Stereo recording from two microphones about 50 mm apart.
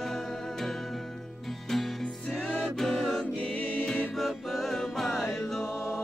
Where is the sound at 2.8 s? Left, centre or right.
Centre.